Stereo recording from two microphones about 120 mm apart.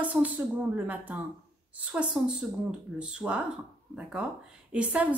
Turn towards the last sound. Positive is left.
turn(degrees=-10)  # may be behind; listen again after turning